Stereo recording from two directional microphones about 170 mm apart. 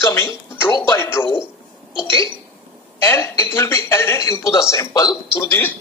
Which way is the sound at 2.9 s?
15° left (ahead or behind).